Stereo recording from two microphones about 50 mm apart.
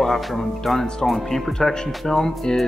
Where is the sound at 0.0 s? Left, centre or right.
Centre.